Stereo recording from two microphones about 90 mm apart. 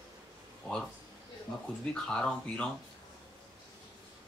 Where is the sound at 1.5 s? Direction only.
15° left (ahead or behind).